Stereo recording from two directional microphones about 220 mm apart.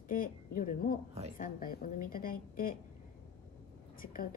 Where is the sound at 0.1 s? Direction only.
40° left (ahead or behind).